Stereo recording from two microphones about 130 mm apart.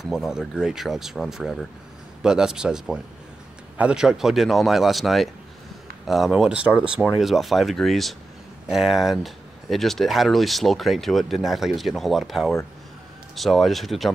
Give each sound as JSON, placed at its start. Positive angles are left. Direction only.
{"t": 0.0, "sound": "speech", "side_deg": -5}